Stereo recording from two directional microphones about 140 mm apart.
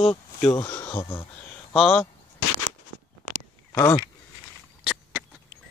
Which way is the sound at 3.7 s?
25° left (ahead or behind).